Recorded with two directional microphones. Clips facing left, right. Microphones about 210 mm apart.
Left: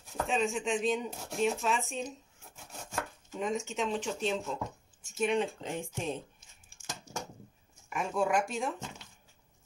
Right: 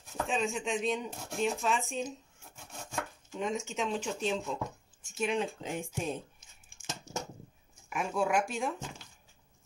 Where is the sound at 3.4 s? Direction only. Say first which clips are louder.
Left 1 dB; centre (ahead or behind).